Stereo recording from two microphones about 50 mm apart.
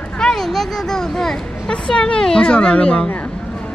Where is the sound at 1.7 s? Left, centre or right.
Centre.